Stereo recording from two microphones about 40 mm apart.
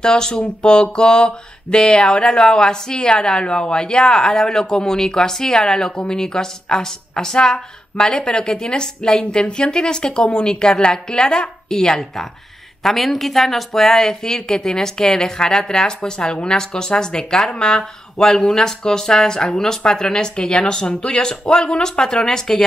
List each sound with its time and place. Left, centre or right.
0.0 s speech: centre
12.8 s speech: centre